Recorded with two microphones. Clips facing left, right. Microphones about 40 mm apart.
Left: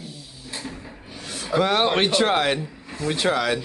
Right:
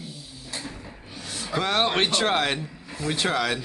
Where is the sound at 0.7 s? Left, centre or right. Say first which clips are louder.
Left 3 dB; centre.